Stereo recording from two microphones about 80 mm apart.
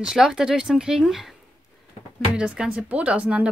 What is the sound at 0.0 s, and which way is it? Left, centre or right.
Speech, centre.